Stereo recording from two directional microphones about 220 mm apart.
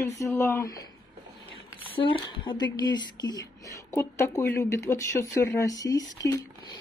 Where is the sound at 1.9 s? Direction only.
20° left (ahead or behind).